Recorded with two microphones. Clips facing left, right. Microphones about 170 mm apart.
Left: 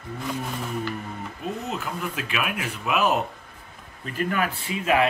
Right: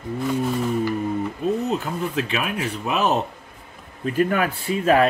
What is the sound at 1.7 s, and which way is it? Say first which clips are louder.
Speech: right 6 dB; 35° right (ahead or behind).